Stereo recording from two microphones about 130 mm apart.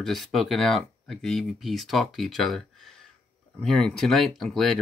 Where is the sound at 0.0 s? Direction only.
Centre (ahead or behind).